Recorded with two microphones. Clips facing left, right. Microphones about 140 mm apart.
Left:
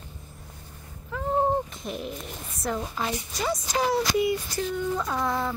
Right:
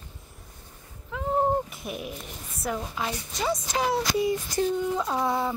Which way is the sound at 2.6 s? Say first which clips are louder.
Left 1 dB; 5° right (ahead or behind).